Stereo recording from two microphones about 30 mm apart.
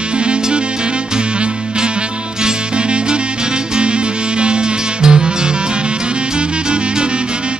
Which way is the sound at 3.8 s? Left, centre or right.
Right.